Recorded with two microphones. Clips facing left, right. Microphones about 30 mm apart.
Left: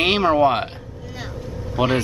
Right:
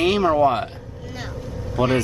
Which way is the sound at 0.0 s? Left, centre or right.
Left.